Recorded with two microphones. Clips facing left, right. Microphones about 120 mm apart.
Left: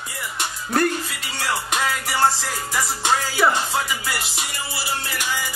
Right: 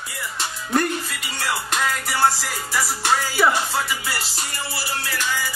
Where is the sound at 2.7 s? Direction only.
15° left (ahead or behind).